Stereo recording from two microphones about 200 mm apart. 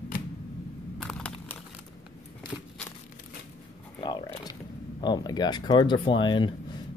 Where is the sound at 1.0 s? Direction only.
5° left (ahead or behind).